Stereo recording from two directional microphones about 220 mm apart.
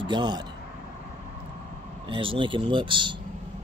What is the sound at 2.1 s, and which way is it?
Speech, 25° right (ahead or behind).